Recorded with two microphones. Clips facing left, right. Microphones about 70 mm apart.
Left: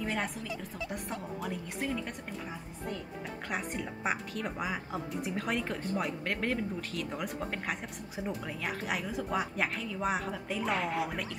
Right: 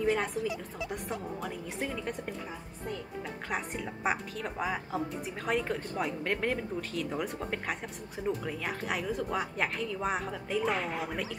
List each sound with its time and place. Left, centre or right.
0.0 s a woman's voice: centre
3.4 s a woman's voice: centre